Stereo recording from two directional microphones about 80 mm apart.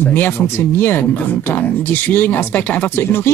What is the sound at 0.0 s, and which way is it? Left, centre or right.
Speech, left.